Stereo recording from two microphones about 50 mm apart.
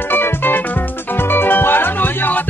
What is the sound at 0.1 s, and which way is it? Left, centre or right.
Music, left.